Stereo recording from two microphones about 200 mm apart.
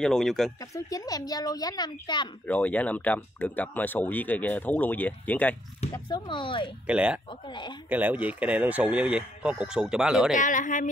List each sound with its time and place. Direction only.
0.0 s speech: centre (ahead or behind)
0.6 s a woman's voice: 15° left (ahead or behind)
2.4 s speech: 5° left (ahead or behind)
5.9 s a woman's voice: 20° left (ahead or behind)
6.9 s speech: 5° right (ahead or behind)
7.2 s a woman's voice: 20° left (ahead or behind)
7.9 s speech: 10° right (ahead or behind)
10.3 s speech: 40° left (ahead or behind)